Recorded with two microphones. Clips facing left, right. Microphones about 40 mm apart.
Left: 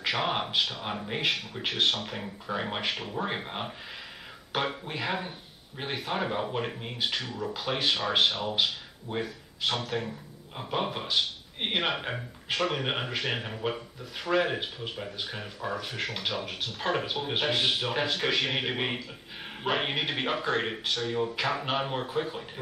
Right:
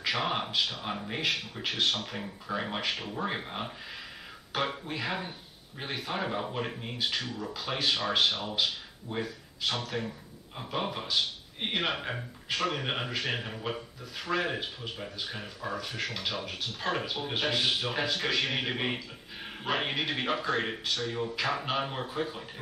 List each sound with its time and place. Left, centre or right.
0.1 s speech: centre